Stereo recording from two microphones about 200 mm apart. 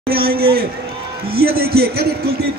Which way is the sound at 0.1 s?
50° right (ahead or behind).